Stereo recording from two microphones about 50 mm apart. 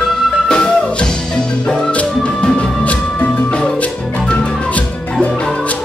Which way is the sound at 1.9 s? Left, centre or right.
Left.